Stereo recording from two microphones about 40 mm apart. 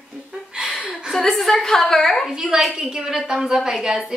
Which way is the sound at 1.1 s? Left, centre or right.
Centre.